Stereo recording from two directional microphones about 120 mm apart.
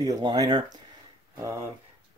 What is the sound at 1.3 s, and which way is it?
Speech, 25° right (ahead or behind).